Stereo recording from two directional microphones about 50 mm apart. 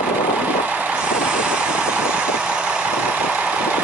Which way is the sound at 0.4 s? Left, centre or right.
Right.